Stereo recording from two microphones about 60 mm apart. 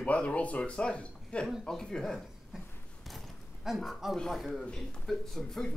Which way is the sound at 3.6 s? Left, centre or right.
Centre.